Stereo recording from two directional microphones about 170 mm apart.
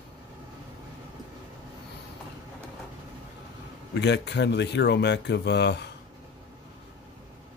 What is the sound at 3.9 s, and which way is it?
Speech, 90° left.